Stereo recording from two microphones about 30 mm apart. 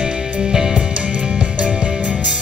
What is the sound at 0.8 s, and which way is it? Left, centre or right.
Music, right.